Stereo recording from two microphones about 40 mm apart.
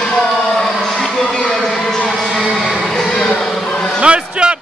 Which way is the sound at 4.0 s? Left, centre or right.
Right.